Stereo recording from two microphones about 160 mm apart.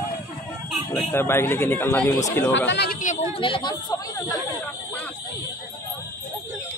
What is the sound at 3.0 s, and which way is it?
Speech, 50° left (ahead or behind).